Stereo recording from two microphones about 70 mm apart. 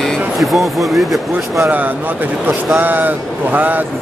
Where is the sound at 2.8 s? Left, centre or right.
Right.